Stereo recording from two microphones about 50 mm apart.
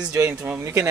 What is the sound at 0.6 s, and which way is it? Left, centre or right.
Speech, right.